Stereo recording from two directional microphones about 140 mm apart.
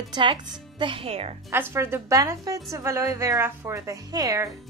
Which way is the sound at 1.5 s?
15° right (ahead or behind).